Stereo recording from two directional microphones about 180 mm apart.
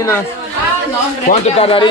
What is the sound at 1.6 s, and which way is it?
Speech, 30° left (ahead or behind).